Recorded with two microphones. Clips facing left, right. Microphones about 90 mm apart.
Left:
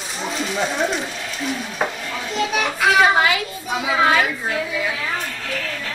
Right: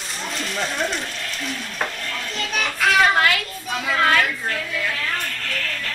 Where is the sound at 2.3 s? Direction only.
5° left (ahead or behind).